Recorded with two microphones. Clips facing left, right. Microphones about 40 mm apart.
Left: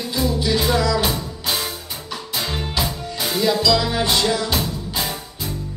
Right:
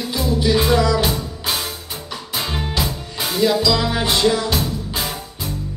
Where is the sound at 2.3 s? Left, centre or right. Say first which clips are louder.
Right 1 dB; centre.